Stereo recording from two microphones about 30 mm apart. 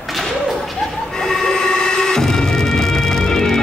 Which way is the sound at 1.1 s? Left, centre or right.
Centre.